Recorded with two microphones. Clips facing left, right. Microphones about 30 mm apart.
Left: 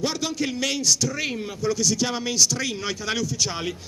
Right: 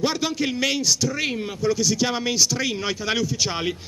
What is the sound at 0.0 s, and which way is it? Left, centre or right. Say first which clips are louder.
A man's voice: right 3 dB; centre.